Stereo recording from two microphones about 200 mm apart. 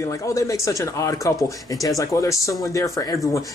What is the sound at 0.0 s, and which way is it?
Speech, 15° left (ahead or behind).